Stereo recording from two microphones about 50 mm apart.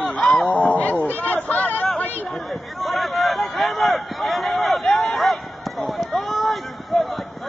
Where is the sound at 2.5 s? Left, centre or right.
Centre.